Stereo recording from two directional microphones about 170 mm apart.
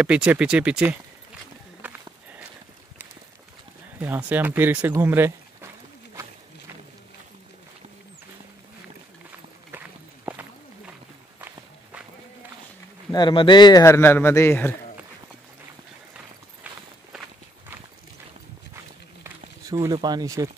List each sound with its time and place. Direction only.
0.0 s speech: 5° right (ahead or behind)
1.8 s walk: 10° right (ahead or behind)
4.3 s speech: 10° right (ahead or behind)
13.1 s a man's voice: 25° left (ahead or behind)
19.2 s a sound: 15° right (ahead or behind)